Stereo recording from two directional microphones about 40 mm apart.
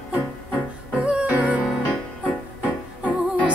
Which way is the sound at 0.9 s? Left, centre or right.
Right.